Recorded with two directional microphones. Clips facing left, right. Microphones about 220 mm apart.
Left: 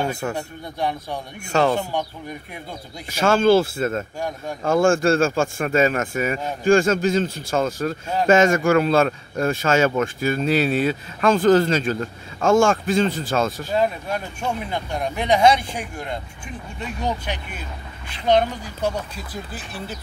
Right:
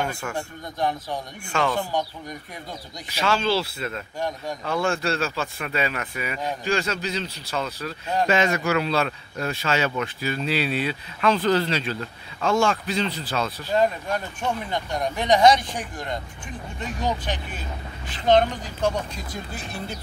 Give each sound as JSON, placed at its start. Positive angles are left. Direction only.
{"t": 0.1, "sound": "a man's voice", "side_deg": 40}
{"t": 1.5, "sound": "a man's voice", "side_deg": 40}
{"t": 3.1, "sound": "speech", "side_deg": 50}
{"t": 13.7, "sound": "speech", "side_deg": 10}
{"t": 18.2, "sound": "speech", "side_deg": 10}